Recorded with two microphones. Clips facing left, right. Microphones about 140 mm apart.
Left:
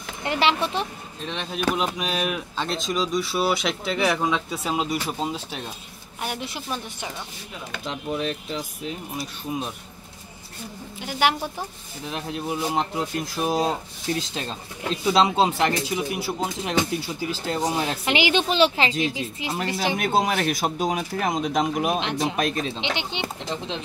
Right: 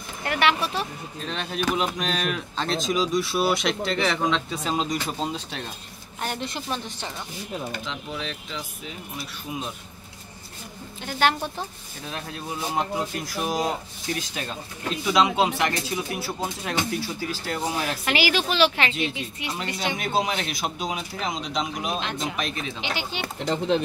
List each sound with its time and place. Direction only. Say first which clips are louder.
0.2 s speech: left 1 dB; 25° left (ahead or behind)
1.2 s a woman's voice: left 1 dB; centre (ahead or behind)
7.8 s speech: left 5 dB; 40° left (ahead or behind)
11.0 s a woman's voice: even; 10° left (ahead or behind); by 15.8 s 30° left (ahead or behind)
16.1 s a woman's voice: left 2 dB; 15° left (ahead or behind)
20.0 s speech: left 3 dB; 50° left (ahead or behind)
22.0 s speech: left 4 dB; 25° left (ahead or behind)
22.4 s speech: left 5 dB; 40° left (ahead or behind)
22.8 s speech: left 2 dB; 20° left (ahead or behind)